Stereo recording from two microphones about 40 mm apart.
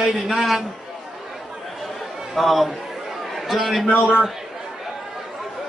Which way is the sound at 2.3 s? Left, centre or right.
Centre.